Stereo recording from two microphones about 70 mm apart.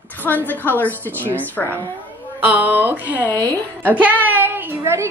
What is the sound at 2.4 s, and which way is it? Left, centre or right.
Speech, right.